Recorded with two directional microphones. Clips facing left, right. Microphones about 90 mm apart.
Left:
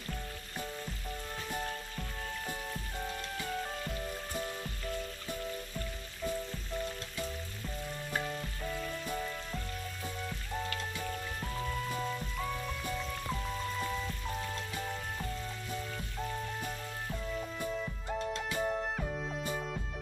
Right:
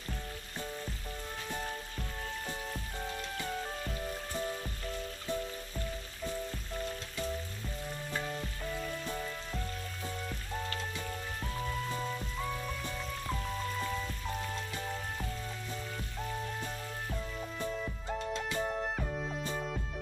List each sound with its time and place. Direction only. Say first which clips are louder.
8.2 s music: left 1 dB; centre (ahead or behind)
11.6 s music: even; centre (ahead or behind)
14.5 s music: even; centre (ahead or behind)
17.3 s music: left 3 dB; centre (ahead or behind)